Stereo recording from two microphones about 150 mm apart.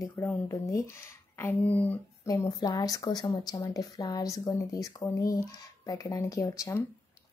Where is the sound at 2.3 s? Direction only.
25° left (ahead or behind).